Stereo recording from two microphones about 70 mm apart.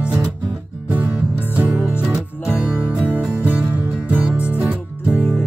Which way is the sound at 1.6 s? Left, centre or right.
Centre.